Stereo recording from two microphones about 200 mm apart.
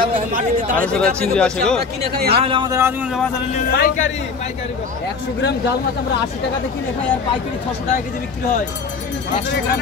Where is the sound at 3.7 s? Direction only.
45° left (ahead or behind).